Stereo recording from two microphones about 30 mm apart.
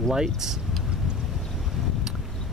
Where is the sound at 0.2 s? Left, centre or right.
Centre.